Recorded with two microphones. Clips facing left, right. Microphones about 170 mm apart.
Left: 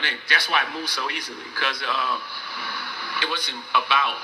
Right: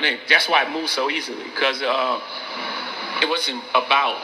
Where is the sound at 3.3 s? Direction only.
15° right (ahead or behind).